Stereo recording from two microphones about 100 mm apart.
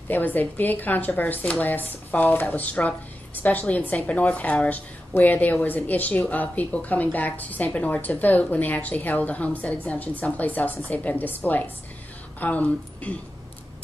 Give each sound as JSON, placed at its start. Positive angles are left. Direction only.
{"t": 0.1, "sound": "a woman's voice", "side_deg": 20}